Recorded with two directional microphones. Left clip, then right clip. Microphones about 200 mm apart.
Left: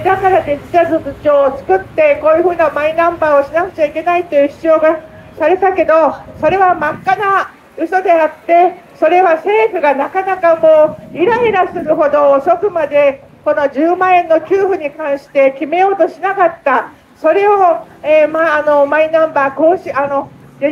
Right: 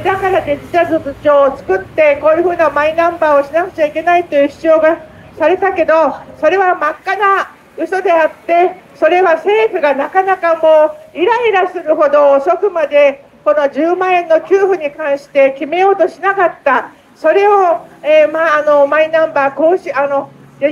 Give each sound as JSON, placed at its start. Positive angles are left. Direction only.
{"t": 0.0, "sound": "a woman's voice", "side_deg": -40}